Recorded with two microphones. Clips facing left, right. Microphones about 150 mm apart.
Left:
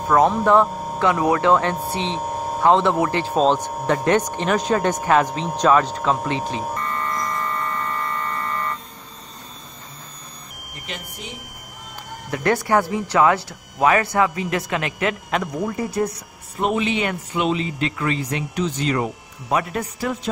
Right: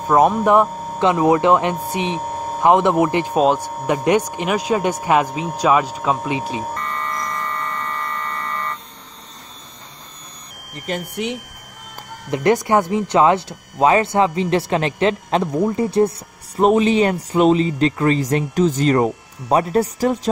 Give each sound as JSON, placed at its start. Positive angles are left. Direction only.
{"t": 0.1, "sound": "speech", "side_deg": -15}
{"t": 6.7, "sound": "buzzer", "side_deg": 5}
{"t": 10.9, "sound": "speech", "side_deg": -45}
{"t": 12.3, "sound": "speech", "side_deg": -20}
{"t": 16.5, "sound": "speech", "side_deg": -40}